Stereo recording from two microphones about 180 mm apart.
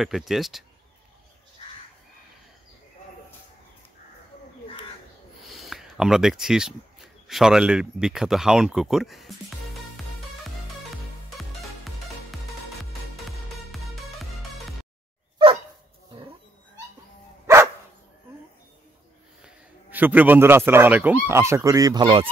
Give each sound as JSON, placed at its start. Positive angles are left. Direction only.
{"t": 0.0, "sound": "speech", "side_deg": 0}
{"t": 5.5, "sound": "a sound", "side_deg": 0}
{"t": 7.2, "sound": "speech", "side_deg": 0}
{"t": 11.3, "sound": "music", "side_deg": 0}
{"t": 13.7, "sound": "music", "side_deg": 0}
{"t": 17.5, "sound": "dog", "side_deg": -15}
{"t": 19.4, "sound": "speech", "side_deg": -10}